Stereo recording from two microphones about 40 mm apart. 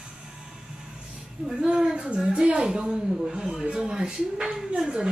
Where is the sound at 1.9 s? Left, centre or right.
Right.